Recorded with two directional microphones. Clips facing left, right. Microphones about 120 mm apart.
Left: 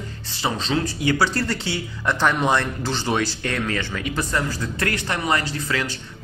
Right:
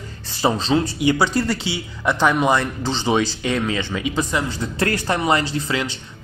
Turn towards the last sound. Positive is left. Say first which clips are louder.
# right 3 dB
turn(degrees=-25)  # may be behind; listen again after turning